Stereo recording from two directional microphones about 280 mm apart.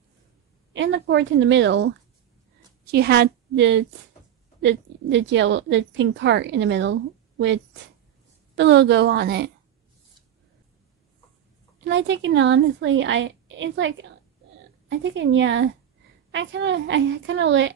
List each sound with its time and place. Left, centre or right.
0.7 s a woman's voice: right
11.8 s a woman's voice: right